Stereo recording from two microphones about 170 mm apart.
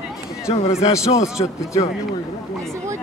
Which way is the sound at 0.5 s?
35° left (ahead or behind).